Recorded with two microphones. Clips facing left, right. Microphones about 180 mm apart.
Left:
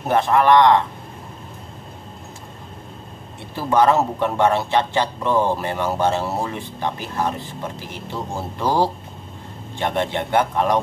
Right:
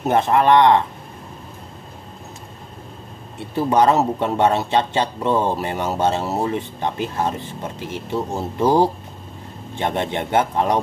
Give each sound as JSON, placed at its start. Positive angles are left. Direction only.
{"t": 0.1, "sound": "a man's voice", "side_deg": -20}
{"t": 3.5, "sound": "a man's voice", "side_deg": -20}
{"t": 8.4, "sound": "a man's voice", "side_deg": -20}